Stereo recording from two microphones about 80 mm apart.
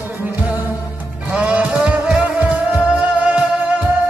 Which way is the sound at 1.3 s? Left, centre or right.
Centre.